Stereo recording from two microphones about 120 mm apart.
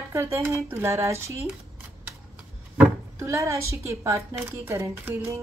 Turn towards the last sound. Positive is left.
turn(degrees=-25)  # may be behind; listen again after turning